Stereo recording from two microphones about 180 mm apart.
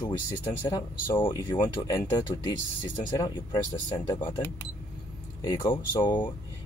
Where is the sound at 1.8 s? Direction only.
25° left (ahead or behind).